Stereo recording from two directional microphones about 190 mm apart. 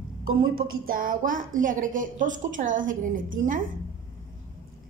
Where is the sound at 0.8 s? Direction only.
45° right (ahead or behind).